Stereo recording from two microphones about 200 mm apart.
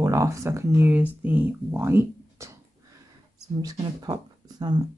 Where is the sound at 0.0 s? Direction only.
15° right (ahead or behind).